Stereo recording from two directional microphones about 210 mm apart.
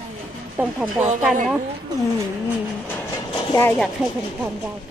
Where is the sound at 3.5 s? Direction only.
10° left (ahead or behind).